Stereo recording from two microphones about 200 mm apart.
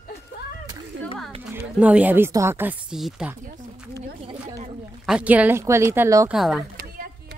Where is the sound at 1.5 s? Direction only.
5° right (ahead or behind).